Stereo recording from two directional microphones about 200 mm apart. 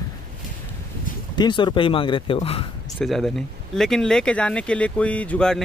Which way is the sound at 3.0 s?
Centre (ahead or behind).